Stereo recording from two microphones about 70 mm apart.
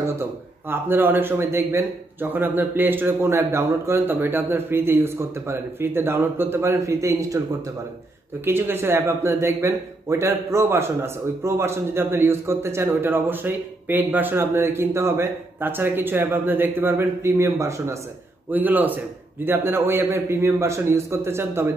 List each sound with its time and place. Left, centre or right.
0.1 s a man's voice: right
1.4 s a man's voice: right
2.3 s a man's voice: right
4.1 s a man's voice: right
8.5 s a man's voice: right
18.5 s a man's voice: right